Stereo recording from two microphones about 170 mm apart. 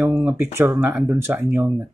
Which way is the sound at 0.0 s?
10° right (ahead or behind).